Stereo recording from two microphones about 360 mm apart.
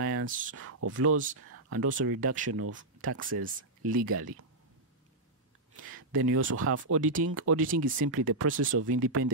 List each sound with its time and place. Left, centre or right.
0.1 s speech: right
5.8 s speech: right